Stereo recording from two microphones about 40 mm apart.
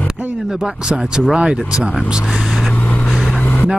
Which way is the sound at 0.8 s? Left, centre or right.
Centre.